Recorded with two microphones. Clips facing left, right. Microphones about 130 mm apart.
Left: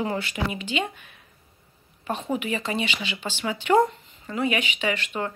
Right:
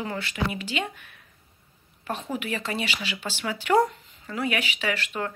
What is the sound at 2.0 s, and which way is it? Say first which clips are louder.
Speech: left 3 dB; centre (ahead or behind).